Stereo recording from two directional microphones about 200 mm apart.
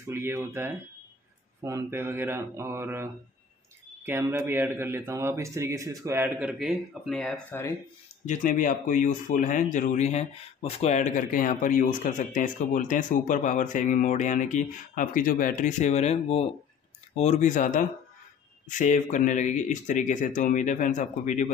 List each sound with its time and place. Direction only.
0.0 s speech: 10° right (ahead or behind); by 7.7 s 5° left (ahead or behind)
8.3 s speech: 40° left (ahead or behind)